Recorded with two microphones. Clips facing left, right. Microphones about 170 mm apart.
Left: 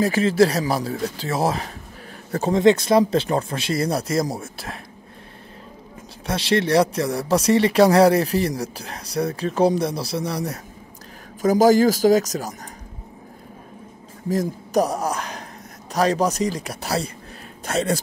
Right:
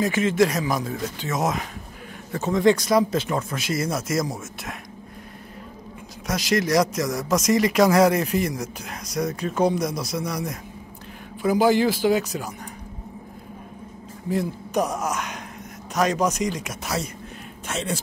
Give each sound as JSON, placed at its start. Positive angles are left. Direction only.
{"t": 0.0, "sound": "speech", "side_deg": 35}
{"t": 6.2, "sound": "speech", "side_deg": 30}
{"t": 14.3, "sound": "a man's voice", "side_deg": 40}